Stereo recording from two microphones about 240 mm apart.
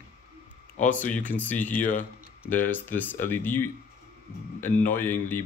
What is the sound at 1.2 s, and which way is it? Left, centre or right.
Speech, centre.